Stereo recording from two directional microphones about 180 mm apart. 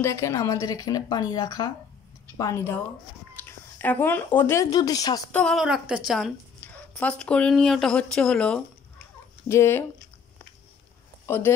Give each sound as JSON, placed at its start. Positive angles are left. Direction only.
{"t": 0.0, "sound": "a woman's voice", "side_deg": 15}
{"t": 5.3, "sound": "speech", "side_deg": 5}
{"t": 11.2, "sound": "speech", "side_deg": 15}